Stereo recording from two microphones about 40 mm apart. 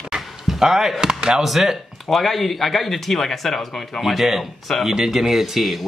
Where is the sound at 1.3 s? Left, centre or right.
Centre.